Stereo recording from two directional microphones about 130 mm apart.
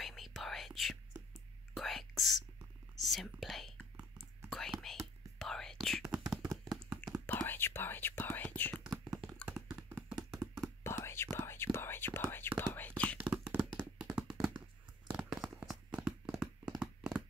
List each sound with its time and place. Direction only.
0.0 s whispering: centre (ahead or behind)
7.2 s whispering: 15° left (ahead or behind)
8.8 s tap: centre (ahead or behind)
9.8 s tap: 25° right (ahead or behind)
10.1 s a sound: centre (ahead or behind)
10.8 s whispering: 20° left (ahead or behind)
13.2 s tap: 10° right (ahead or behind)
15.0 s a sound: 5° right (ahead or behind)